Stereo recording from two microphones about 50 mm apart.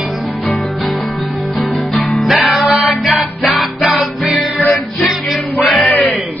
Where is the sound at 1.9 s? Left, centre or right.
Centre.